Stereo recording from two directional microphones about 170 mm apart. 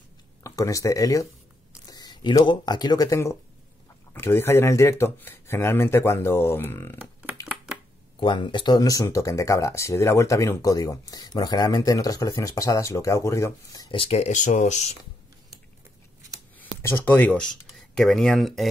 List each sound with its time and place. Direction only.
0.4 s speech: 20° left (ahead or behind)
7.0 s typing: 10° right (ahead or behind)
7.4 s a sound: 5° right (ahead or behind)
8.2 s speech: 30° left (ahead or behind)
13.9 s speech: 35° left (ahead or behind)
16.7 s speech: 15° left (ahead or behind)